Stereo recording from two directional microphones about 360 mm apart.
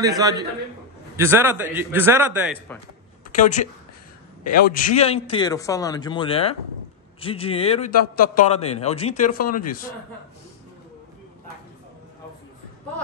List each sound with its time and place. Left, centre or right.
0.0 s a man's voice: centre
3.3 s a woman's voice: centre